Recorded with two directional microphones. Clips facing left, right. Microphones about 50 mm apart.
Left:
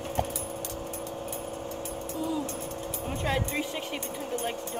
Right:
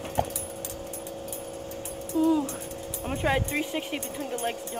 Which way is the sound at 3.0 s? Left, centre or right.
Centre.